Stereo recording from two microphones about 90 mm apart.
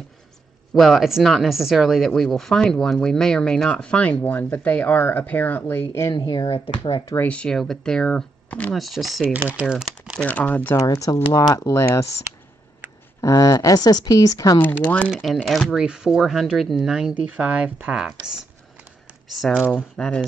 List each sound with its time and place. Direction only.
0.7 s speech: centre (ahead or behind); by 6.0 s 20° left (ahead or behind)
6.1 s speech: 45° left (ahead or behind)
6.4 s speech: 80° left
7.2 s speech: 15° left (ahead or behind)
7.5 s speech: 5° left (ahead or behind)
8.7 s speech: centre (ahead or behind)
9.2 s speech: 20° right (ahead or behind)
10.2 s speech: 20° left (ahead or behind)
10.9 s speech: 40° left (ahead or behind)
13.2 s speech: 40° left (ahead or behind)
14.6 s speech: 20° left (ahead or behind)
15.4 s speech: centre (ahead or behind)
19.3 s speech: centre (ahead or behind)
20.0 s speech: 10° left (ahead or behind)